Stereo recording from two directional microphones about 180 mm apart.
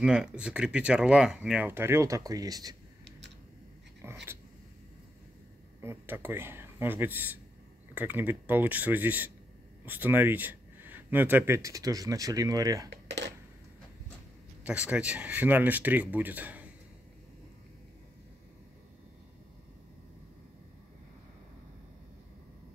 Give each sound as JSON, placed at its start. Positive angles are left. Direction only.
{"t": 0.0, "sound": "speech", "side_deg": -5}
{"t": 4.0, "sound": "dog", "side_deg": -15}
{"t": 5.8, "sound": "speech", "side_deg": -15}
{"t": 12.9, "sound": "a sound", "side_deg": -75}
{"t": 14.6, "sound": "speech", "side_deg": -5}